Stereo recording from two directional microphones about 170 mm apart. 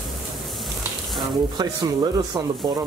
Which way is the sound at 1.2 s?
25° right (ahead or behind).